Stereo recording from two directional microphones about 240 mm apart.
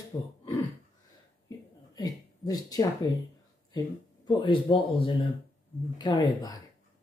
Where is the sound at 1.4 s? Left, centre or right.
Centre.